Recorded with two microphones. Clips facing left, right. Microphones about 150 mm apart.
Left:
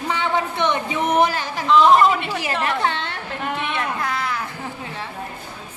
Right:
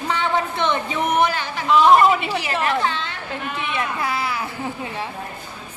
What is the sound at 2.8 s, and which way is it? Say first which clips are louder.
Speech: left 1 dB; 60° left (ahead or behind).